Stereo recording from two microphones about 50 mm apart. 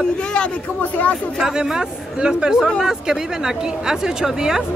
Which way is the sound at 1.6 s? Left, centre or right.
Centre.